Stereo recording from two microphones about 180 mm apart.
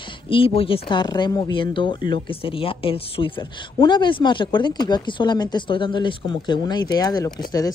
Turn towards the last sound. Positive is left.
turn(degrees=20)  # may be behind; listen again after turning